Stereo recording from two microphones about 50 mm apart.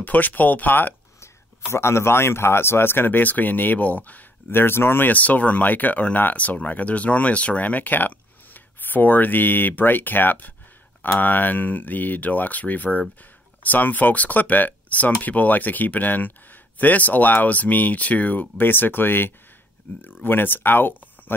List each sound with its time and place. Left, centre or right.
0.0 s speech: left
1.2 s speech: left
4.5 s speech: left
5.1 s speech: left